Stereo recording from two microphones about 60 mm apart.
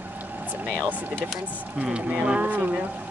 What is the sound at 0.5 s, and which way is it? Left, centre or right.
Speech, right.